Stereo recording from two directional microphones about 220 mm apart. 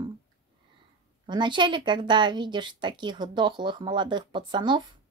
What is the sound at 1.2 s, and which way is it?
A woman's voice, 20° right (ahead or behind).